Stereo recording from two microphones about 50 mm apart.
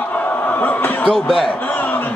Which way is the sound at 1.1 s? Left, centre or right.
Centre.